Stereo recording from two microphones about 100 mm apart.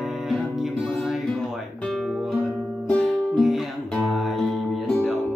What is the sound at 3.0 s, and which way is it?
Music, centre (ahead or behind).